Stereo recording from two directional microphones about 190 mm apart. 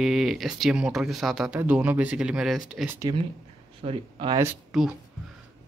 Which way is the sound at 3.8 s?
25° right (ahead or behind).